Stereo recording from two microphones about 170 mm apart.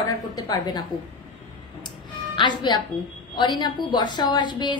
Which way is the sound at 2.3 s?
25° left (ahead or behind).